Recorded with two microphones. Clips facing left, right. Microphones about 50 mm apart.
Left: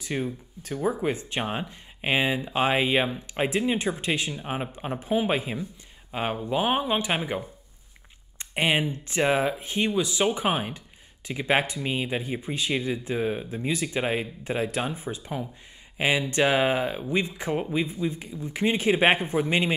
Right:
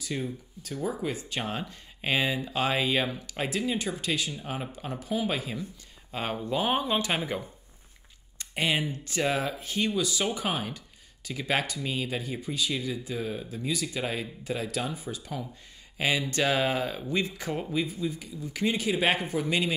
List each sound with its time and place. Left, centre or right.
0.0 s speech: left
6.1 s speech: centre; by 19.7 s left